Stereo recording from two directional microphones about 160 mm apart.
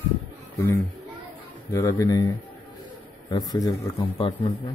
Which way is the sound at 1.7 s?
20° left (ahead or behind).